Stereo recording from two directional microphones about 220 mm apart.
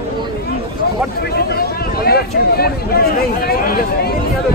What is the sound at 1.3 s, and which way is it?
Speech, 45° left (ahead or behind).